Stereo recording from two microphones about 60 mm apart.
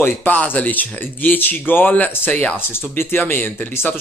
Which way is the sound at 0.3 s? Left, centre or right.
Left.